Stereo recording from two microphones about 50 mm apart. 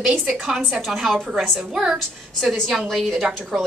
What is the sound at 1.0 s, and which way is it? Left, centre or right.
Speech, centre.